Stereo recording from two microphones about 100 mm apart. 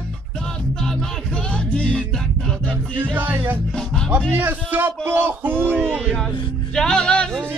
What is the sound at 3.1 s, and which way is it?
Speech, 20° right (ahead or behind).